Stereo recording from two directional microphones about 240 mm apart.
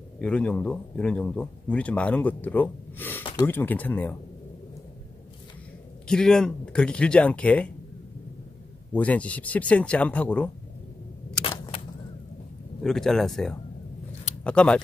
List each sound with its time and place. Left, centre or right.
0.2 s speech: centre
6.0 s speech: centre
8.9 s speech: centre
11.4 s vehicle: left
12.8 s speech: centre